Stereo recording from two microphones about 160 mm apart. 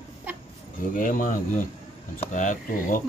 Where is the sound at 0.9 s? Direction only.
55° left (ahead or behind).